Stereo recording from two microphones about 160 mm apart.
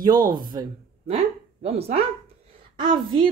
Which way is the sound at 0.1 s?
60° right (ahead or behind).